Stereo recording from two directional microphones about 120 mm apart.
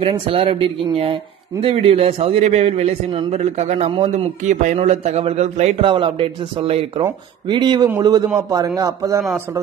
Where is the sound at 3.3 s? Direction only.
70° right (ahead or behind).